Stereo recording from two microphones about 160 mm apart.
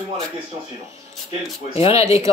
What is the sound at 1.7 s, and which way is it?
Speech, 40° left (ahead or behind).